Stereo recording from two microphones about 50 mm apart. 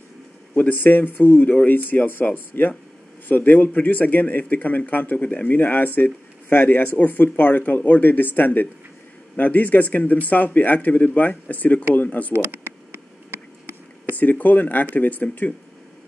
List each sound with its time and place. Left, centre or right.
0.6 s speech: left
12.3 s a sound: right
14.1 s speech: left